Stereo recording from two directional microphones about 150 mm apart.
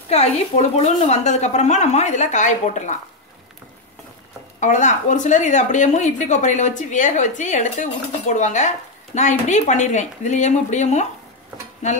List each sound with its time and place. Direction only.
0.1 s a woman's voice: 45° left (ahead or behind)
4.6 s a woman's voice: 55° left (ahead or behind)